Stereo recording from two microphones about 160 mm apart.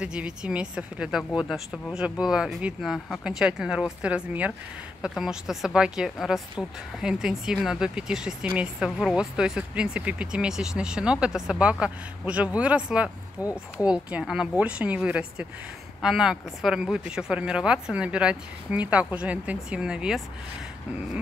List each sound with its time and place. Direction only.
0.0 s speech: 5° right (ahead or behind)
13.4 s speech: 20° left (ahead or behind)
13.8 s speech: 5° right (ahead or behind)